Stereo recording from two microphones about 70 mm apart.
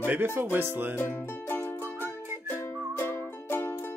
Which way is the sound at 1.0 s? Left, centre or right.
Left.